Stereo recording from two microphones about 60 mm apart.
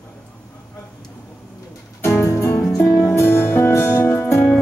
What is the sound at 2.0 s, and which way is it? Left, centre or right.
Music, left.